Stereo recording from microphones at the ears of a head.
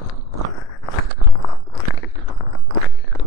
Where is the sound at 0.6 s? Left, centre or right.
Left.